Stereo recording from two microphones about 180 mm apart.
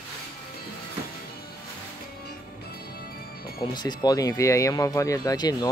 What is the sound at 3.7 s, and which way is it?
Speech, 25° left (ahead or behind).